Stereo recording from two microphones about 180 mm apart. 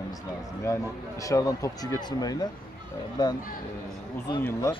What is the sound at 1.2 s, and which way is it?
Speech, 20° left (ahead or behind).